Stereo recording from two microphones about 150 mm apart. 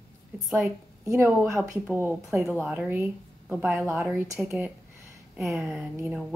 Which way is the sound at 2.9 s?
10° right (ahead or behind).